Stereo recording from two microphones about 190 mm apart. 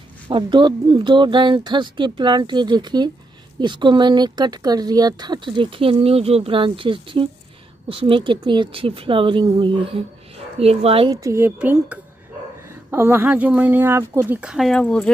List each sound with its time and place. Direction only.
0.3 s speech: 25° right (ahead or behind)
11.1 s speech: 15° right (ahead or behind); by 15.0 s 5° left (ahead or behind)